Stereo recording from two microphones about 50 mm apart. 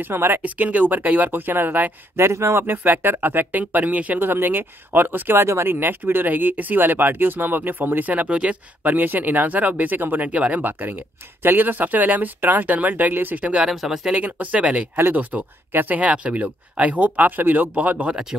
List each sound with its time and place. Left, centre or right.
0.0 s speech: right
0.4 s speech: right
2.1 s speech: right
4.2 s speech: right
5.4 s speech: right
10.3 s speech: right
10.6 s speech: right
13.4 s speech: right
13.7 s speech: centre
14.1 s speech: right
15.1 s speech: right
16.0 s speech: right